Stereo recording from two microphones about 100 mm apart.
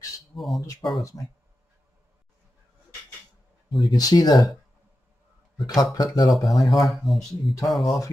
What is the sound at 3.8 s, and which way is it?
Speech, 40° left (ahead or behind).